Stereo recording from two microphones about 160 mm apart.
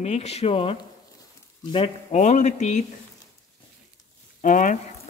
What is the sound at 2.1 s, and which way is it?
Speech, 45° left (ahead or behind).